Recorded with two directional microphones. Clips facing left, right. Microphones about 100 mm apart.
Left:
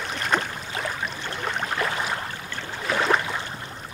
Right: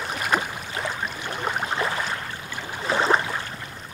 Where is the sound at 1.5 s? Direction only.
15° right (ahead or behind).